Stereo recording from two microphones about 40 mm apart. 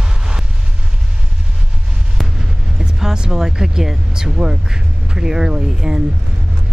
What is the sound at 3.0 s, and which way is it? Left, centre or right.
Vehicle, centre.